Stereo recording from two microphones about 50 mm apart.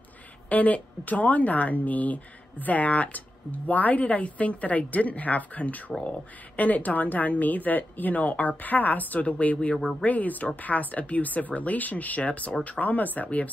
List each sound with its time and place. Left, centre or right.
0.5 s a woman's voice: left
9.8 s speech: centre
10.0 s a woman's voice: left